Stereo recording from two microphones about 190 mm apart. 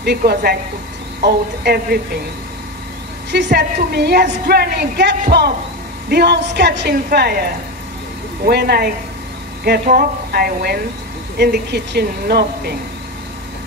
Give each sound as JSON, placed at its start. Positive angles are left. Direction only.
{"t": 0.0, "sound": "a woman's voice", "side_deg": -60}
{"t": 3.3, "sound": "a woman's voice", "side_deg": -65}
{"t": 8.5, "sound": "a woman's voice", "side_deg": -55}